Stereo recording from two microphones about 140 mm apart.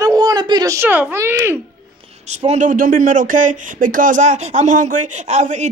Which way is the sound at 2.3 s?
55° right (ahead or behind).